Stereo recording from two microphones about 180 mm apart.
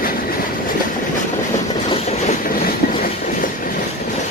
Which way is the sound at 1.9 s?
35° left (ahead or behind).